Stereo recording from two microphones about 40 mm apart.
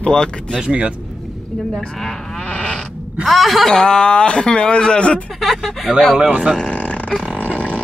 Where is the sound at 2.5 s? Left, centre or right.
Left.